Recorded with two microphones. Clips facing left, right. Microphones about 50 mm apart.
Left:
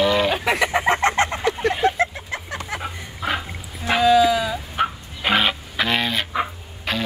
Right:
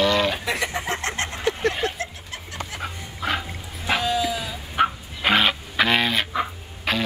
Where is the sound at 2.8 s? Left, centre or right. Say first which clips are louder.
Left 1 dB; centre.